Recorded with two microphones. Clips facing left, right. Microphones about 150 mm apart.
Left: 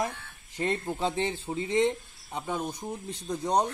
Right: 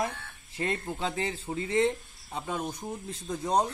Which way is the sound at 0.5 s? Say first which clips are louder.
Left 2 dB; 25° left (ahead or behind).